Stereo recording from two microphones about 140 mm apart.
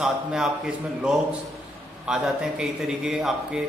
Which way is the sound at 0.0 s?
5° right (ahead or behind).